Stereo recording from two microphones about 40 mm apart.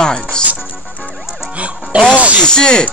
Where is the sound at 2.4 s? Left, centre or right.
Left.